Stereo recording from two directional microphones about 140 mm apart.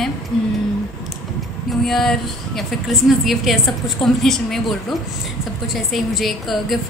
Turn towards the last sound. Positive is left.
turn(degrees=0)  # may be behind; listen again after turning